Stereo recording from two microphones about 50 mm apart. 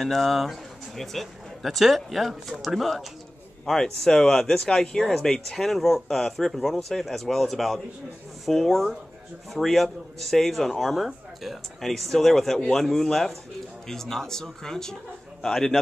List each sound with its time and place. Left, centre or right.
0.0 s speech: centre
3.6 s speech: centre
12.5 s speech: centre
12.8 s speech: centre